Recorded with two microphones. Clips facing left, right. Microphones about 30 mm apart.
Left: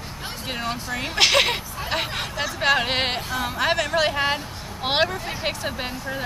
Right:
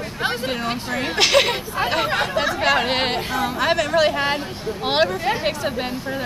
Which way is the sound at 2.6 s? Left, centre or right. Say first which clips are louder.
Left 1 dB; centre.